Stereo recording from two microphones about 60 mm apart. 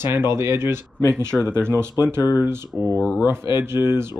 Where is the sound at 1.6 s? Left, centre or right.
Right.